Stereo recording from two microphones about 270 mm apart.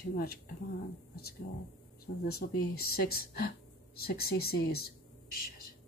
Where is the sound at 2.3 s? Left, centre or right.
Left.